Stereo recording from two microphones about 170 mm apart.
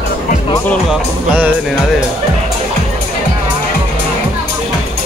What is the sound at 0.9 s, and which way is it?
Speech, 10° right (ahead or behind).